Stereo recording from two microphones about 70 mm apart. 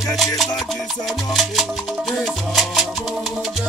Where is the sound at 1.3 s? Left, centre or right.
Centre.